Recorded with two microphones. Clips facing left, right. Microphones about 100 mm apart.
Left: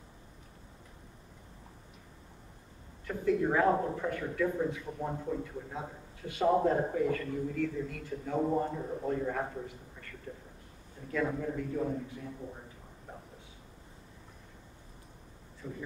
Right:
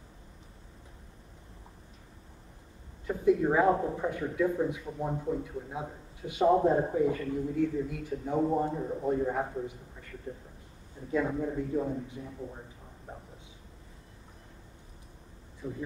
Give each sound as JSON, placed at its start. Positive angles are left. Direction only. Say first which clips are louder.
{"t": 3.1, "sound": "a man's voice", "louder": "right 4 dB", "side_deg": -20}
{"t": 11.1, "sound": "a man's voice", "louder": "right 3 dB", "side_deg": -20}
{"t": 15.6, "sound": "a man's voice", "louder": "right 4 dB", "side_deg": -15}